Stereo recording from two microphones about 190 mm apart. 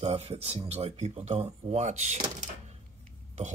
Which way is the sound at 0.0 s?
30° right (ahead or behind).